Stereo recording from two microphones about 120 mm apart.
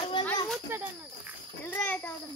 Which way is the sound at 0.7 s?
15° right (ahead or behind).